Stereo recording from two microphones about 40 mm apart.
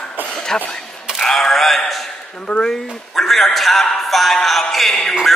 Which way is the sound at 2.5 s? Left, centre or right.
Centre.